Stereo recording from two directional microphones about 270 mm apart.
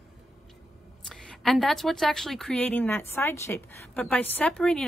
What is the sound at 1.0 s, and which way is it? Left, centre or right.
A woman's voice, centre.